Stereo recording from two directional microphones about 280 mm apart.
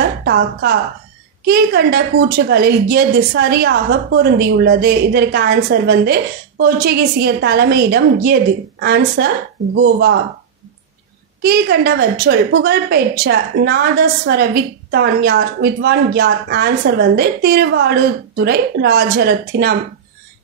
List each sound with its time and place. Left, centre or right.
0.2 s a woman's voice: right
11.4 s a woman's voice: right